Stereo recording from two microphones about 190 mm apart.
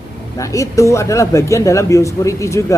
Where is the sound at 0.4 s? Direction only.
15° left (ahead or behind).